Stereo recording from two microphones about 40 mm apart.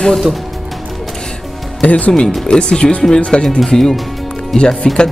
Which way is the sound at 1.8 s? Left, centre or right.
Left.